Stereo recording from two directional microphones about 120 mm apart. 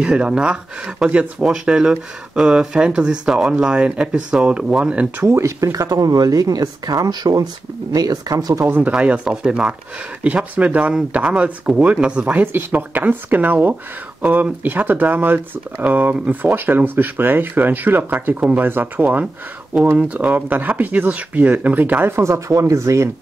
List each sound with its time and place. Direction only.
0.0 s speech: 5° right (ahead or behind)
5.2 s speech: 25° right (ahead or behind)